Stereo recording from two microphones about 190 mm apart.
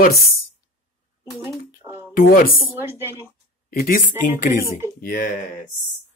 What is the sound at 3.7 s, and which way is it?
Speech, 50° left (ahead or behind).